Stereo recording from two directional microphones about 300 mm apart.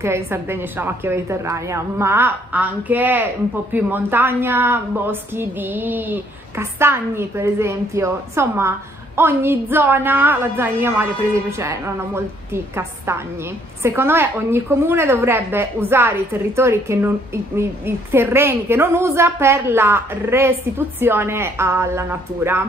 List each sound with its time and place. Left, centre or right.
0.0 s a woman's voice: centre